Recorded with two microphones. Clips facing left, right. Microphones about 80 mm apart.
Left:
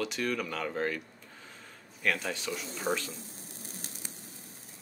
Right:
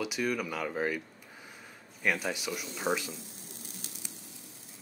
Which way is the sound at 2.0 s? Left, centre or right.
Centre.